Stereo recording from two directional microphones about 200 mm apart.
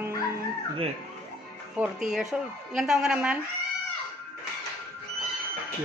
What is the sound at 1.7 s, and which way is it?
Speech, 5° right (ahead or behind).